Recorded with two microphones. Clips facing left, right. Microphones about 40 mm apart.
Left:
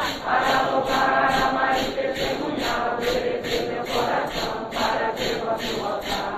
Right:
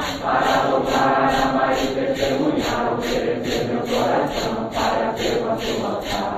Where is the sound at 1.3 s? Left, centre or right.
Right.